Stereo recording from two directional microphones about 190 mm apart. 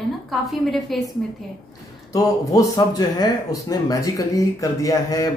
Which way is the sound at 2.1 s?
15° left (ahead or behind).